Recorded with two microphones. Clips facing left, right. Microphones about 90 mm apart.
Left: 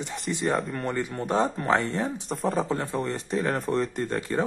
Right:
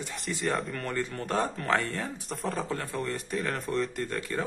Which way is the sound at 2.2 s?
Centre (ahead or behind).